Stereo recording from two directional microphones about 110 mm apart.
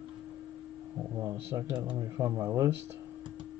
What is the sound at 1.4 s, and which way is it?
Speech, 20° right (ahead or behind).